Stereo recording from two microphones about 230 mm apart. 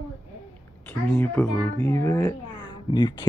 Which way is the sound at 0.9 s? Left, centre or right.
Centre.